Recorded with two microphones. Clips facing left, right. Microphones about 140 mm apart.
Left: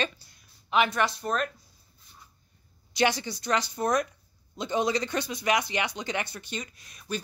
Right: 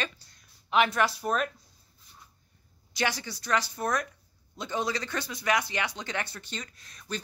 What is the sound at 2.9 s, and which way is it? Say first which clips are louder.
A woman's voice: left 5 dB; 20° left (ahead or behind).